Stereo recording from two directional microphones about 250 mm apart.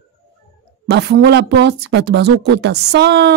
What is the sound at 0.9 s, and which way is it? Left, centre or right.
Speech, right.